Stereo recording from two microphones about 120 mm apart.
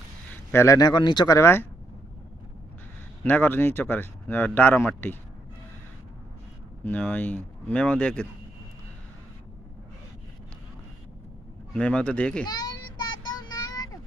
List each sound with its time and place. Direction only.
0.3 s speech: 20° left (ahead or behind)
3.3 s speech: 15° left (ahead or behind)
6.8 s speech: 15° left (ahead or behind)
11.7 s speech: 10° left (ahead or behind)
12.4 s child singing: 35° left (ahead or behind)